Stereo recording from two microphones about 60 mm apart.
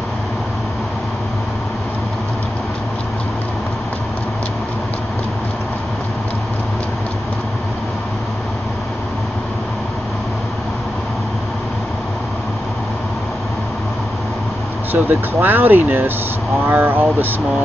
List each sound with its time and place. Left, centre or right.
14.9 s speech: right